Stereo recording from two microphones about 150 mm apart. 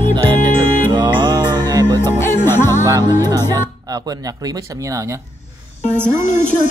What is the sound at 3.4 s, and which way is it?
Music, 25° right (ahead or behind).